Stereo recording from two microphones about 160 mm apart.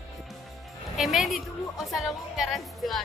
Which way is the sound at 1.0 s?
Centre (ahead or behind).